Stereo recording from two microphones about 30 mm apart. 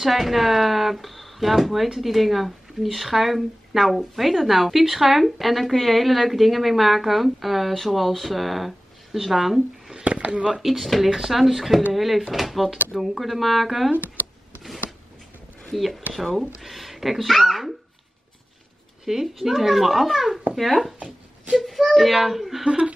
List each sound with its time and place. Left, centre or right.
0.0 s a woman's voice: centre
10.0 s speech: right
10.6 s a woman's voice: centre
15.7 s a woman's voice: centre
19.0 s a woman's voice: centre
22.7 s speech: right